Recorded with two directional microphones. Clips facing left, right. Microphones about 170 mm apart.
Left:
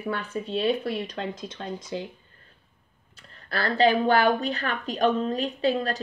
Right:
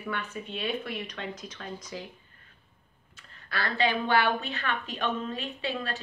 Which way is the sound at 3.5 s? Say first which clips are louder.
Left 7 dB; 40° left (ahead or behind).